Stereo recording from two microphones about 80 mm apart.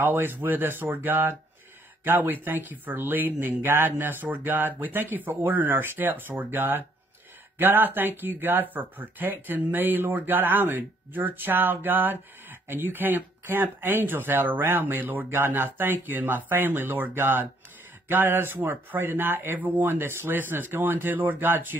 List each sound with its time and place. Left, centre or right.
0.0 s speech: right